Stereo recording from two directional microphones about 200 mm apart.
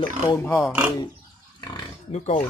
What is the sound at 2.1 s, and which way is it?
Speech, 35° left (ahead or behind).